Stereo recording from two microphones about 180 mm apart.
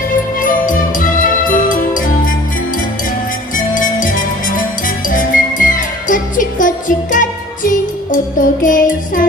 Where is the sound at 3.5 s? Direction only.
50° left (ahead or behind).